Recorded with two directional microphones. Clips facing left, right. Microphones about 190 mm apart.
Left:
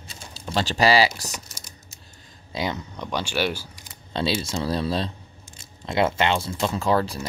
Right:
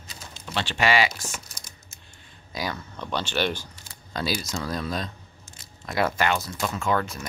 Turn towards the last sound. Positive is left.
turn(degrees=35)  # may be behind; listen again after turning